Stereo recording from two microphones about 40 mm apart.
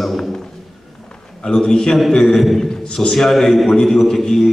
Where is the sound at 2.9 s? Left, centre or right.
Centre.